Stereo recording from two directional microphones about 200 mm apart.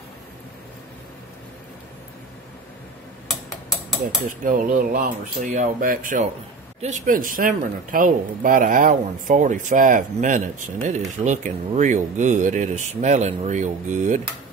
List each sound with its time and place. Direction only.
4.5 s speech: 45° right (ahead or behind)